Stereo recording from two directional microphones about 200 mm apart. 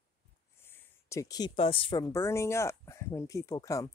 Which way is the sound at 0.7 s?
15° left (ahead or behind).